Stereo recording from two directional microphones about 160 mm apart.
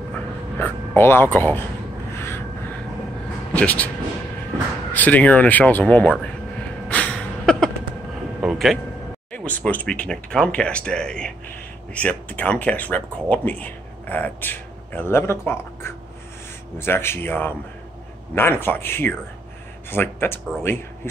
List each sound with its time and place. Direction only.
0.1 s a sound: 10° left (ahead or behind)
2.1 s crow: 15° left (ahead or behind)
3.5 s speech: 10° left (ahead or behind)
4.9 s speech: 10° left (ahead or behind)
6.9 s a sound: 5° left (ahead or behind)
9.3 s speech: 10° left (ahead or behind)